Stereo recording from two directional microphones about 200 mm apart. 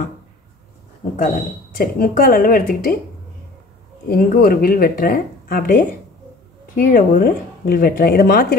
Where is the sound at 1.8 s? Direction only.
45° left (ahead or behind).